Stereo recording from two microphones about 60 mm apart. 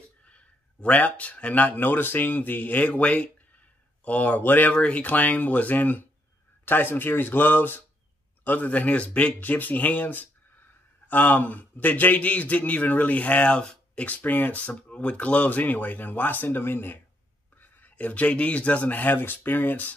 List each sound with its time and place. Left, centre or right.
0.3 s a man's voice: left
4.7 s a man's voice: centre; by 17.0 s left
17.6 s a man's voice: left